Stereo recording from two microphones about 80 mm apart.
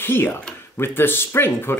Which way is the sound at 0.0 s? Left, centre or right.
Left.